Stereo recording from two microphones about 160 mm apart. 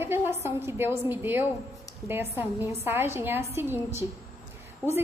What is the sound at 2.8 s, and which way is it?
A woman's voice, 15° right (ahead or behind).